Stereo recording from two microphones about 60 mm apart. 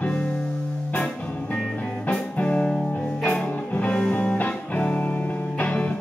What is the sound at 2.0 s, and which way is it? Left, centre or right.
Music, left.